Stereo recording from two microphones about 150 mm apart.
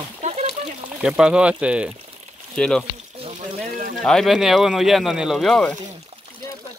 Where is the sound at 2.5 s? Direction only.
5° left (ahead or behind).